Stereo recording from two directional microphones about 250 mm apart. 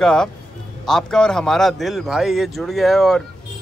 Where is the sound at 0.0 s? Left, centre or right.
Centre.